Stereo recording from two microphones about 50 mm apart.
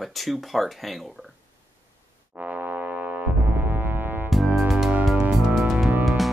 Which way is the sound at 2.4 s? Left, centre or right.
Right.